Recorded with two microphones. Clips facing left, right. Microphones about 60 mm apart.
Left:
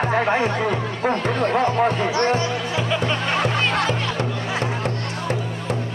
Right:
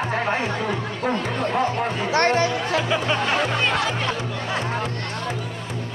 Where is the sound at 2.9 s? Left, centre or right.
Centre.